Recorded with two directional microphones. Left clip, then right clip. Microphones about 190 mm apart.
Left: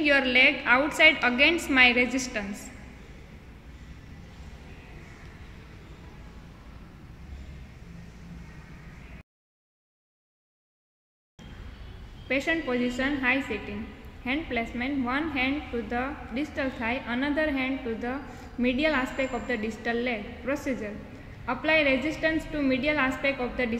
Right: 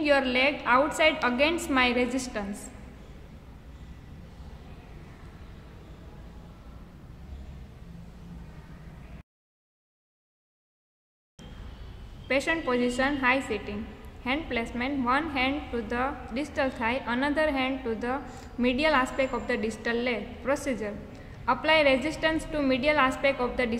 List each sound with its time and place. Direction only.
0.0 s a woman's voice: 15° right (ahead or behind)
12.3 s a woman's voice: 15° right (ahead or behind)